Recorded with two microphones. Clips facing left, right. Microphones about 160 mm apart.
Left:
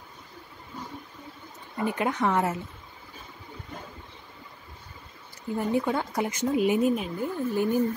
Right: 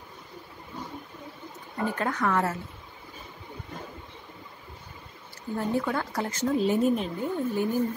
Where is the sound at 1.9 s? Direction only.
15° left (ahead or behind).